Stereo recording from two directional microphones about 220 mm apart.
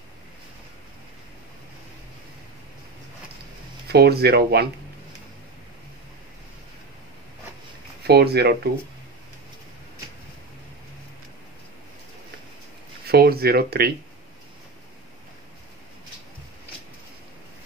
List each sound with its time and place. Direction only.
3.8 s speech: 45° right (ahead or behind)
8.1 s speech: 45° right (ahead or behind)
13.0 s speech: 45° right (ahead or behind)